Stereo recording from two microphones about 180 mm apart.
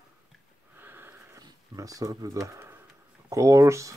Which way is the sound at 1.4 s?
20° right (ahead or behind).